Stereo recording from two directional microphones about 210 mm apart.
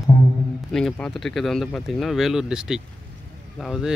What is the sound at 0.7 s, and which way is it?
Speech, 5° left (ahead or behind).